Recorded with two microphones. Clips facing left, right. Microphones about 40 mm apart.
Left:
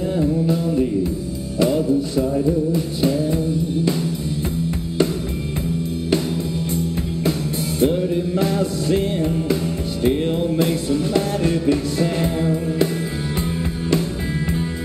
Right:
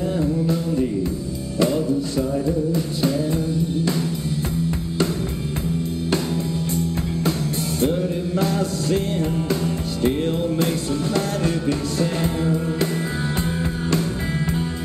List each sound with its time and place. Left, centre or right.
0.2 s music: centre
7.8 s music: centre